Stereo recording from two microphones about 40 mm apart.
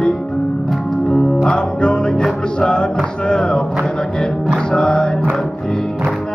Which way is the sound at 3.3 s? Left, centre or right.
Left.